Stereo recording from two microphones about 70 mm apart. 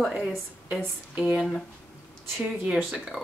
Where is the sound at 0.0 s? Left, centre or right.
Centre.